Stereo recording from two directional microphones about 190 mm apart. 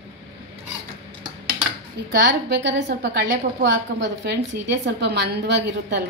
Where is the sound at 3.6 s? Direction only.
70° right (ahead or behind).